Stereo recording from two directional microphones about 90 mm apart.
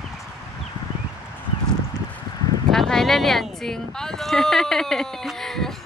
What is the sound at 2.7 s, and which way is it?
Speech, 5° left (ahead or behind).